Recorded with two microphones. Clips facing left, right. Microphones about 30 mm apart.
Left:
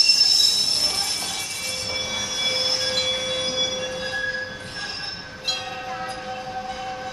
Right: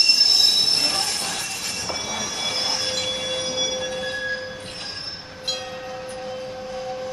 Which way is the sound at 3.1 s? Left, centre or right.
Centre.